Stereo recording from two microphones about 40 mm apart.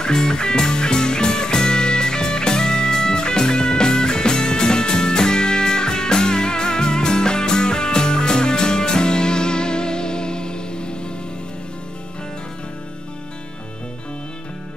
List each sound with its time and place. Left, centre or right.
0.0 s music: centre